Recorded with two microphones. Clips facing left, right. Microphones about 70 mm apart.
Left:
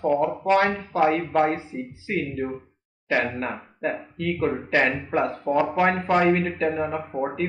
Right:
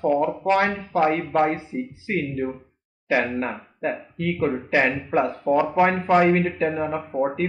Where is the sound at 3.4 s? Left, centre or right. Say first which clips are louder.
Right 1 dB; centre.